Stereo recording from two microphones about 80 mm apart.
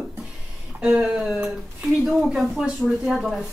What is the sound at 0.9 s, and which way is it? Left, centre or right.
Speech, centre.